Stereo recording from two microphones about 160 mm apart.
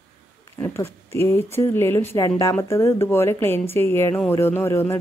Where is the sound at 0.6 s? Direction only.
15° left (ahead or behind).